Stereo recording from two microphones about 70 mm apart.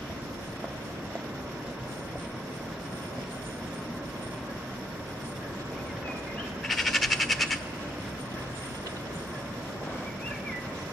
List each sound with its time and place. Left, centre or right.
6.7 s frog: centre